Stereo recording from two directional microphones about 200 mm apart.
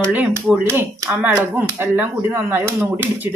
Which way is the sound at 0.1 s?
10° right (ahead or behind).